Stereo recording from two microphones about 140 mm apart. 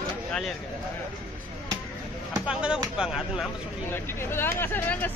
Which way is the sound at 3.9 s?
15° left (ahead or behind).